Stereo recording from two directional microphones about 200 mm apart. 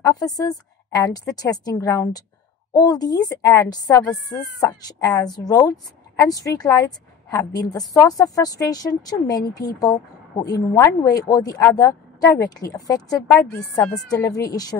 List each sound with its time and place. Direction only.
0.0 s speech: 20° left (ahead or behind)
14.2 s speech: 15° left (ahead or behind)